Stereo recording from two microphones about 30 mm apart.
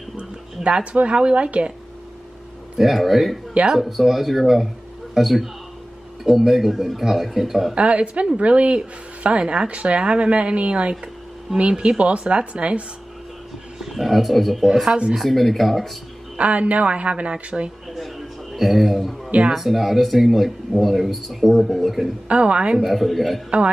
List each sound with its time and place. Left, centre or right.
0.6 s speech: centre
1.0 s a woman's voice: right
2.8 s speech: centre
7.7 s speech: right
9.4 s a woman's voice: right
9.7 s speech: right
11.5 s speech: centre
12.0 s speech: right
13.8 s speech: centre
16.3 s speech: right
17.9 s a sound: centre
19.5 s speech: centre
22.3 s speech: right
22.9 s speech: centre